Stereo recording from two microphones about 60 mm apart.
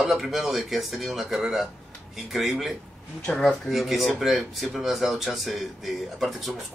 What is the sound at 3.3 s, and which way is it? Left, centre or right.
Speech, centre.